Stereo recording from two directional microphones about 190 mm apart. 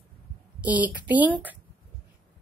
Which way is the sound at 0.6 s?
10° right (ahead or behind).